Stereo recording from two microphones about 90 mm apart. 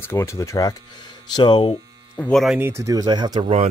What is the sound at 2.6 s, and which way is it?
Speech, 30° right (ahead or behind).